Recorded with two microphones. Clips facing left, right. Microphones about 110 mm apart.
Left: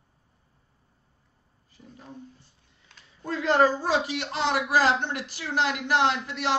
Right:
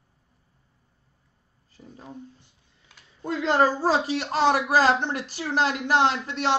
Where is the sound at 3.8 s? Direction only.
35° right (ahead or behind).